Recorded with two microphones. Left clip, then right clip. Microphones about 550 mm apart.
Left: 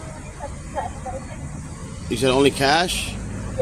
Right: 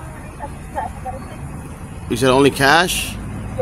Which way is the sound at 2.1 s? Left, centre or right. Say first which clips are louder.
Right 4 dB; right.